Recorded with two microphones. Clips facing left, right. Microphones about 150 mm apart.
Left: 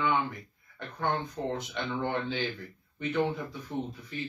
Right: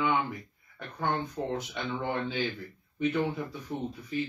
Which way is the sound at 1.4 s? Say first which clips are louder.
Even; 5° right (ahead or behind).